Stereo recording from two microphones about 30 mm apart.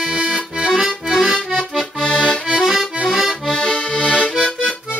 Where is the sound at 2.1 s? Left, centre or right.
Left.